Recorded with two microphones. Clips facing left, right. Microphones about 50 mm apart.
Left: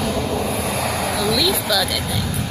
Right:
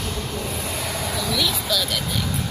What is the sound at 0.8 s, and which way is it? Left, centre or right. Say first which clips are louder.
Vehicle: left 6 dB; left.